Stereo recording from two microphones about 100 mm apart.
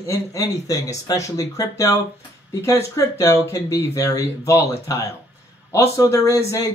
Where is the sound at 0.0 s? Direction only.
35° left (ahead or behind).